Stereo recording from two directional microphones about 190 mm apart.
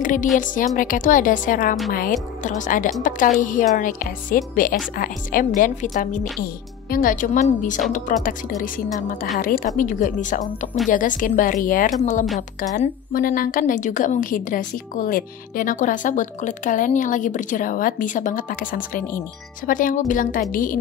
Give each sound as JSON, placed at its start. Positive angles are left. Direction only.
{"t": 0.0, "sound": "a woman's voice", "side_deg": 45}